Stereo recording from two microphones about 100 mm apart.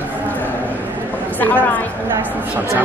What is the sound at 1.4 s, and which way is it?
Speech, 15° left (ahead or behind).